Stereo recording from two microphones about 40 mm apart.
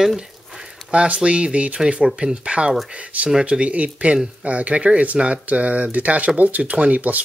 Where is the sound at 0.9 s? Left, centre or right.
Right.